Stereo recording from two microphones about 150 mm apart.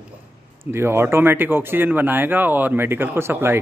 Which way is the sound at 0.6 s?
15° right (ahead or behind).